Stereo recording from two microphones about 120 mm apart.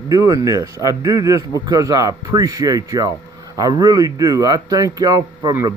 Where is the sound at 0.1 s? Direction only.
30° right (ahead or behind).